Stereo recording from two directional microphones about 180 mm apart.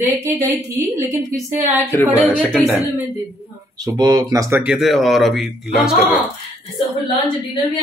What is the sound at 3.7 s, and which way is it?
Speech, 20° right (ahead or behind).